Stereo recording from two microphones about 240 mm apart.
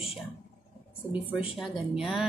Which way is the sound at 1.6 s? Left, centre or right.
Centre.